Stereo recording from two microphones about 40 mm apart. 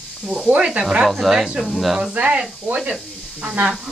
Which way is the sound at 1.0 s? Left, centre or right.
Centre.